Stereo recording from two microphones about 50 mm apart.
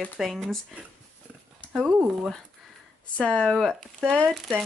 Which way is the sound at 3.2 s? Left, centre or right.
Left.